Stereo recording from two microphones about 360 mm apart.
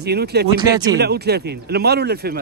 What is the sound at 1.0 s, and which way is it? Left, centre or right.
Speech, right.